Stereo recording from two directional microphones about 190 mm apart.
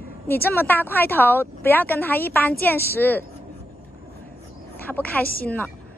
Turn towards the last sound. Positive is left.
turn(degrees=10)  # may be behind; listen again after turning